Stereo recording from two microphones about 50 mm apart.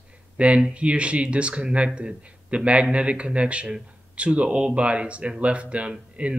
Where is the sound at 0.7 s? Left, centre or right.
Right.